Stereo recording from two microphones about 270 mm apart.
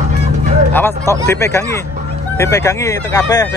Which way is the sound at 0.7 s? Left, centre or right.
Centre.